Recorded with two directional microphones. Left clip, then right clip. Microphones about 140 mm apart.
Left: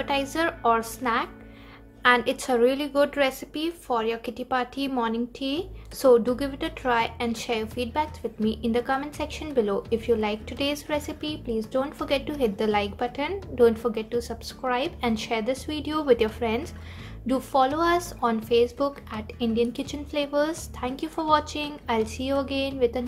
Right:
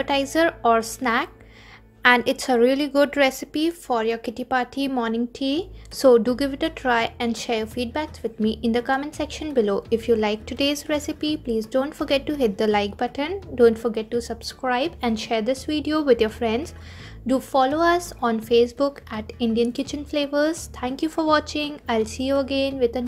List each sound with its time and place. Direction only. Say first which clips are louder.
0.0 s a woman's voice: right 5 dB; 40° right (ahead or behind)